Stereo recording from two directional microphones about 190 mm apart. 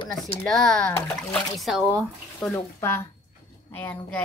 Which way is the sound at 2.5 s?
15° left (ahead or behind).